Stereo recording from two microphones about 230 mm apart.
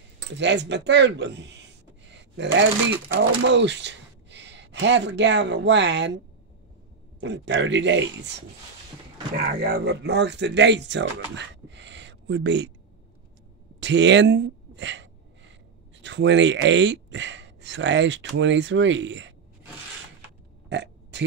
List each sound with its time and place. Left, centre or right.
0.4 s speech: right
3.1 s speech: right
7.2 s speech: right
9.4 s speech: right
13.7 s speech: right
20.6 s burping: right